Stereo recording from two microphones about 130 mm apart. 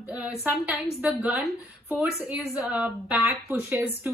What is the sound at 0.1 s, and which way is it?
Speech, 10° right (ahead or behind).